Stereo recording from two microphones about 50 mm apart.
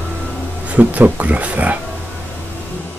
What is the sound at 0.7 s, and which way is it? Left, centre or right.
Speech, right.